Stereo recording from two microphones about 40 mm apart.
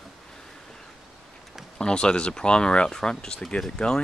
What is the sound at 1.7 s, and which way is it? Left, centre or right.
Speech, left.